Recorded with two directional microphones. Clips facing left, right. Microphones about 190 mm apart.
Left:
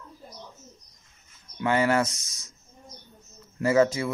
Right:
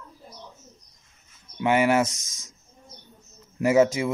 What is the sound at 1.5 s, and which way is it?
Speech, 15° right (ahead or behind).